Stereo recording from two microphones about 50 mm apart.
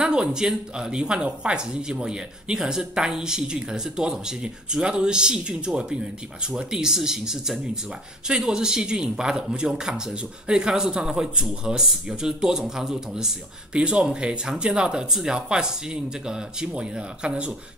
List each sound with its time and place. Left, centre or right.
0.0 s speech: centre
13.7 s speech: right